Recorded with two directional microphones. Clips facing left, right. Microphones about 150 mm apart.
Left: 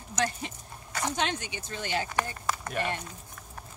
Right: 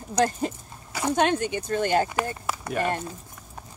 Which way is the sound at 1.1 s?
50° right (ahead or behind).